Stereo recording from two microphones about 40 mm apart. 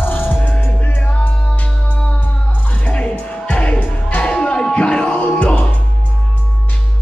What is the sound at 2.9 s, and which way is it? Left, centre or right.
Music, left.